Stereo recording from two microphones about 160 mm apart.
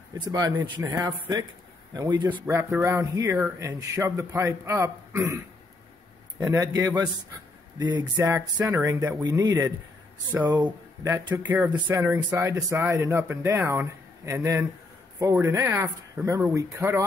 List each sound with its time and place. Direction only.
0.3 s a man's voice: 20° right (ahead or behind)
6.4 s a man's voice: 20° right (ahead or behind)